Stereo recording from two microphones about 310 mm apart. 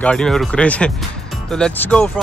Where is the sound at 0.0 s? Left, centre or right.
Centre.